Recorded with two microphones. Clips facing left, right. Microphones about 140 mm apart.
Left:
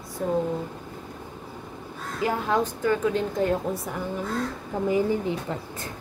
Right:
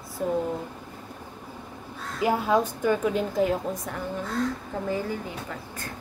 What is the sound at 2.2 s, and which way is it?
A woman's voice, 10° right (ahead or behind).